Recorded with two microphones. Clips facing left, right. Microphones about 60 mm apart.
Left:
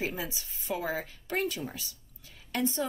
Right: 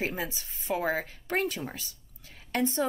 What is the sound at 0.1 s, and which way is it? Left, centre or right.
Speech, right.